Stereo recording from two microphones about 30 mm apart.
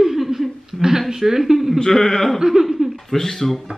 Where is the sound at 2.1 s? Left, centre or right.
Centre.